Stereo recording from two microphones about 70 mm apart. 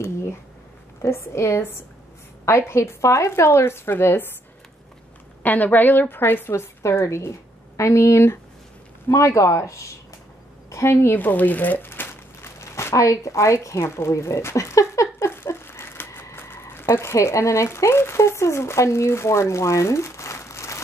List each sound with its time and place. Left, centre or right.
1.0 s a woman's voice: left
2.7 s a woman's voice: left
5.4 s a woman's voice: left